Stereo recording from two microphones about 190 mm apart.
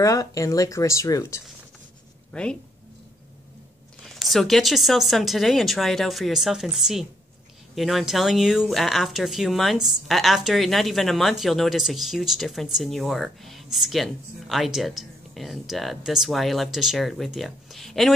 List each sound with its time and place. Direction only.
0.0 s speech: 15° left (ahead or behind)
2.3 s speech: 5° left (ahead or behind)
4.0 s speech: centre (ahead or behind)